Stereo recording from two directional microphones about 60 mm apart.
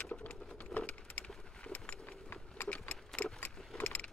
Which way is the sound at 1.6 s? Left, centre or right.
Left.